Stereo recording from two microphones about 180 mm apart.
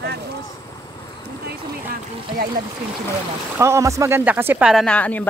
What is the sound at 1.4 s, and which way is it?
Speech, 55° right (ahead or behind).